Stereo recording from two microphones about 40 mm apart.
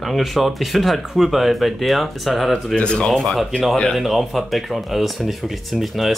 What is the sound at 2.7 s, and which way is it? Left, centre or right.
Speech, left.